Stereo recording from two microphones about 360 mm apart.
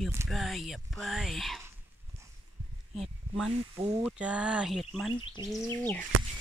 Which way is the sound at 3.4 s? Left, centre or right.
Centre.